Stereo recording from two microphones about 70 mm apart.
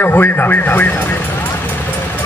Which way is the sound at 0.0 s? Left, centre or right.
Left.